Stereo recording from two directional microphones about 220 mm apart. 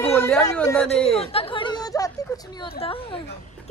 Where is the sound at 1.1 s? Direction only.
25° left (ahead or behind).